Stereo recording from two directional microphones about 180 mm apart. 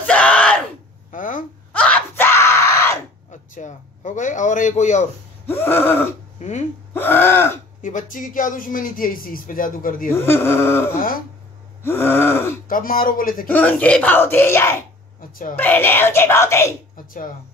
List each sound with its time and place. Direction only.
0.0 s screaming: 5° left (ahead or behind)
1.1 s wail: 45° left (ahead or behind)
1.7 s screaming: 5° left (ahead or behind)
3.3 s a sound: 45° left (ahead or behind)
5.5 s speech: 10° left (ahead or behind)
6.9 s gasp: 10° left (ahead or behind)
7.8 s speech: 45° left (ahead or behind)
10.1 s speech: 15° left (ahead or behind)
11.0 s speech: 50° left (ahead or behind)
11.8 s speech: 15° left (ahead or behind)
12.6 s speech: 50° left (ahead or behind)
13.5 s speech: 10° left (ahead or behind)
16.9 s speech: 50° left (ahead or behind)